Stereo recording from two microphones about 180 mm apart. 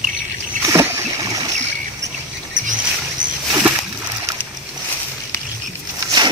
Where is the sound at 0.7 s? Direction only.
15° right (ahead or behind).